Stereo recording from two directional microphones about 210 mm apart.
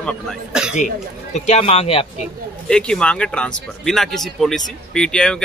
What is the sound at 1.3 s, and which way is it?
Speech, 30° left (ahead or behind).